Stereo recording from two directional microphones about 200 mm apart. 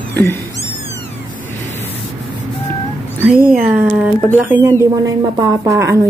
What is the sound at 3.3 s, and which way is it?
A woman's voice, 5° right (ahead or behind).